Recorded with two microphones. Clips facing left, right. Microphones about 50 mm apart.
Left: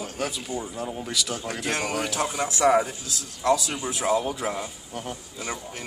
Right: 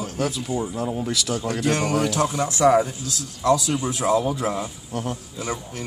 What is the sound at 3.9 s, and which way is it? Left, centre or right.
Speech, centre.